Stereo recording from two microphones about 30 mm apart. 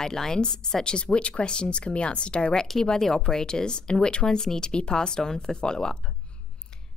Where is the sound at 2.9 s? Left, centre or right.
Centre.